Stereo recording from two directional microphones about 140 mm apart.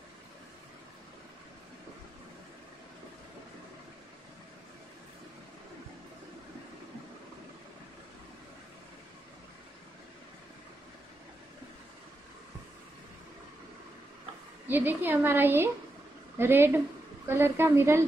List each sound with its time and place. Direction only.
14.7 s a woman's voice: 15° right (ahead or behind)